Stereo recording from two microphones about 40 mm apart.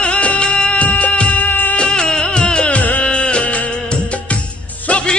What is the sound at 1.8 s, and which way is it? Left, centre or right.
Music, left.